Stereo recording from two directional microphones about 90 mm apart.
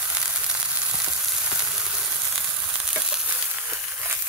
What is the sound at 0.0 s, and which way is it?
Frying, 10° right (ahead or behind).